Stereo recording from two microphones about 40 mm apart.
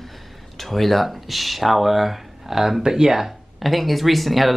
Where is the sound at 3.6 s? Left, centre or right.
Centre.